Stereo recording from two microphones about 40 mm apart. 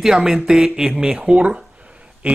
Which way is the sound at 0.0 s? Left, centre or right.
Centre.